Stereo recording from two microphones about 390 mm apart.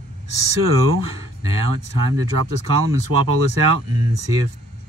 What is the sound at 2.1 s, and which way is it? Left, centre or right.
Speech, right.